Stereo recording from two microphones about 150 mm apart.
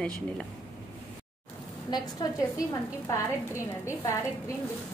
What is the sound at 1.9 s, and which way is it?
A woman's voice, 25° left (ahead or behind).